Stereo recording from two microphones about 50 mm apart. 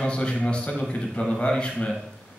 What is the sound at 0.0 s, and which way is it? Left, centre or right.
A man's voice, centre.